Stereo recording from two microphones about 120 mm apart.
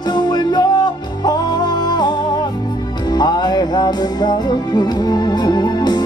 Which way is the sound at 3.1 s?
35° left (ahead or behind).